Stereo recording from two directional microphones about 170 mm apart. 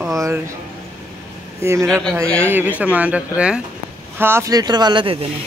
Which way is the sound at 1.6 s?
15° right (ahead or behind).